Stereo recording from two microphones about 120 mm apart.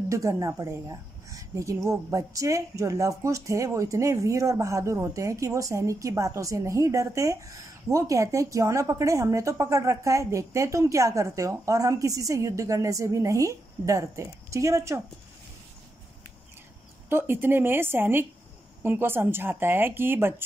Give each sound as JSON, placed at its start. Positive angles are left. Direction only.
{"t": 0.1, "sound": "a woman's voice", "side_deg": -25}
{"t": 17.1, "sound": "a woman's voice", "side_deg": -15}